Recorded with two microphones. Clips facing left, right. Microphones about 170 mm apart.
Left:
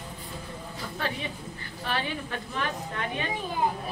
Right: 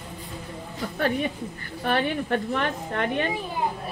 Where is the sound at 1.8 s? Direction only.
55° right (ahead or behind).